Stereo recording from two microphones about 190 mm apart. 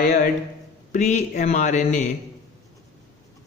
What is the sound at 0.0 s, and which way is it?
A man's voice, 45° left (ahead or behind).